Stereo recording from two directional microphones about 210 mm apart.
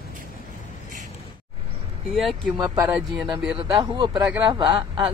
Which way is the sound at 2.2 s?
Centre (ahead or behind).